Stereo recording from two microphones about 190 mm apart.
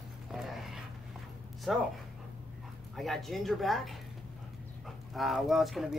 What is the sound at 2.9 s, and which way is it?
Speech, centre (ahead or behind).